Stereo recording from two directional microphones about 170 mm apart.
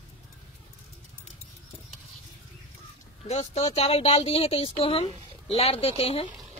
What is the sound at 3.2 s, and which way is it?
Speech, 40° left (ahead or behind).